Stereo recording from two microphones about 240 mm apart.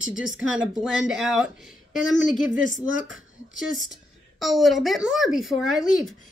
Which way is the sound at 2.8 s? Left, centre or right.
Right.